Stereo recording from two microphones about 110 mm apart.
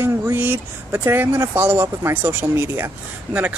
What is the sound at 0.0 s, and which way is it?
Speech, 20° right (ahead or behind).